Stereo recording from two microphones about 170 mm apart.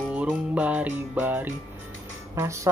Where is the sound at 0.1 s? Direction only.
10° right (ahead or behind).